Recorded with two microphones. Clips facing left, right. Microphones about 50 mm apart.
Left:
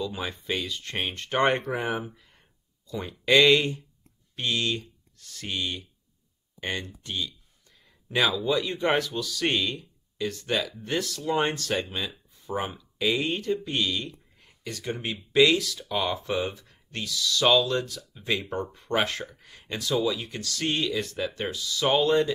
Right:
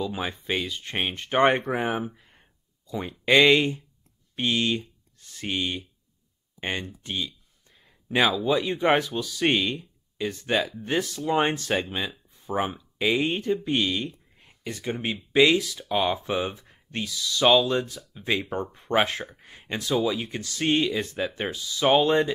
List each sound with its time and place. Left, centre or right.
0.0 s speech: right
7.8 s a sound: right
8.5 s speech: centre